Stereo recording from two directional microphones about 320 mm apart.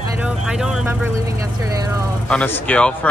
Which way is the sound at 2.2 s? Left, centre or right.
Centre.